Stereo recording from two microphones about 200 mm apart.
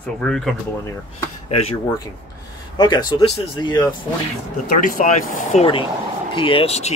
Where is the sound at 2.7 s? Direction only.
20° left (ahead or behind).